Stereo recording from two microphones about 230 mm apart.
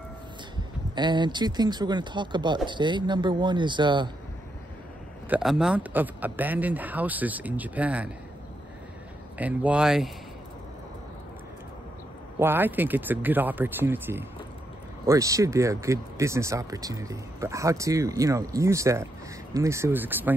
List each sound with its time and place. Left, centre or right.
0.9 s speech: centre
5.3 s speech: centre
9.4 s speech: centre
12.4 s speech: centre